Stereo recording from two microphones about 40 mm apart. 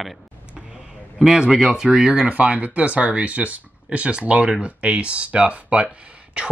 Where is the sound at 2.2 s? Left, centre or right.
Right.